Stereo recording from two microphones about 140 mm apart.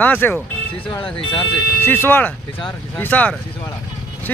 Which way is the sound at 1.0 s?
40° left (ahead or behind).